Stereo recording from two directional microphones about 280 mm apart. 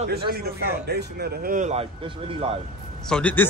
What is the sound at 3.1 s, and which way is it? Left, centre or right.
Speech, centre.